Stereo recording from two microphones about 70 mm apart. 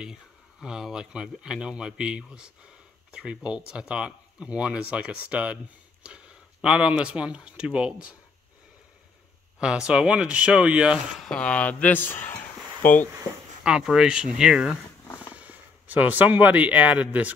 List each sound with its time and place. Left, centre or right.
0.7 s speech: centre
9.6 s speech: centre
11.3 s speech: centre
13.9 s speech: centre
15.3 s a man's voice: right